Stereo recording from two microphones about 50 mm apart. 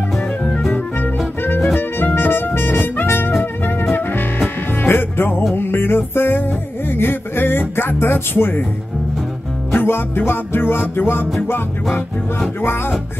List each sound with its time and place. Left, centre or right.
0.5 s music: centre
1.4 s music: left
9.8 s music: left